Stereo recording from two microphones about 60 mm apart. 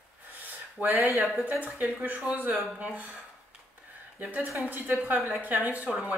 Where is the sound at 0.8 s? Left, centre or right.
Right.